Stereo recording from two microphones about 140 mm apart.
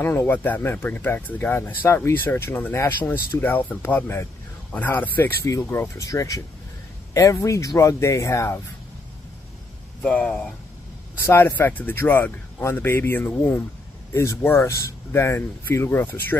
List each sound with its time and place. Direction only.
0.0 s speech: 15° left (ahead or behind)
10.0 s speech: 10° left (ahead or behind)